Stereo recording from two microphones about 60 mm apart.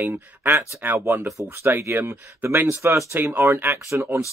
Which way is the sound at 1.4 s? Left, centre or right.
Right.